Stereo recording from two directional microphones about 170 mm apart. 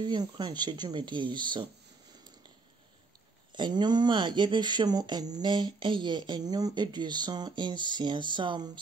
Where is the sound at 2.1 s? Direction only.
25° right (ahead or behind).